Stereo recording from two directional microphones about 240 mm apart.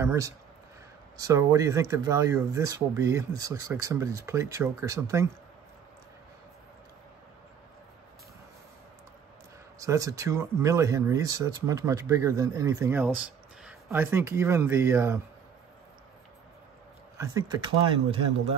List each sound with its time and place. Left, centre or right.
0.0 s speech: centre
9.8 s speech: centre
17.2 s speech: centre